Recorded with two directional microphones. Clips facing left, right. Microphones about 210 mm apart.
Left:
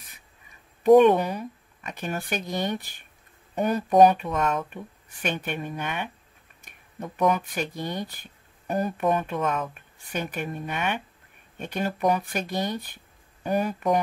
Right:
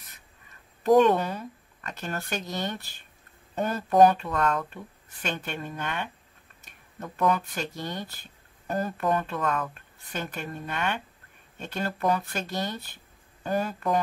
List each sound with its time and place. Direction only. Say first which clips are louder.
0.8 s speech: left 4 dB; 15° left (ahead or behind)